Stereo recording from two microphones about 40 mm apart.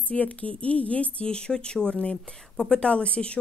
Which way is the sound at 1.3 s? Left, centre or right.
Left.